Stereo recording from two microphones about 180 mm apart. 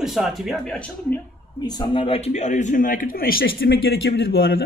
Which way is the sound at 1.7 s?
25° left (ahead or behind).